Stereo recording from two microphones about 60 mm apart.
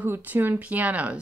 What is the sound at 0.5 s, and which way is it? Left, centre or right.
Speech, right.